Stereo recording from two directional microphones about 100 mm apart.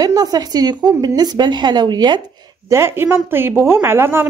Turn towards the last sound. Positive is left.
turn(degrees=-25)  # may be behind; listen again after turning